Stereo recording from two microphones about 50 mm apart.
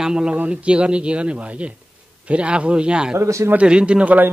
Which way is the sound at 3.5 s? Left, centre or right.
Right.